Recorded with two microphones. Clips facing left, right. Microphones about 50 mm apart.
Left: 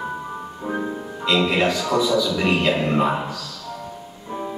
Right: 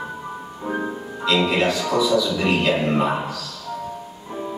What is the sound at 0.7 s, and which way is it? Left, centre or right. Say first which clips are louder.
Music: right 1 dB; centre.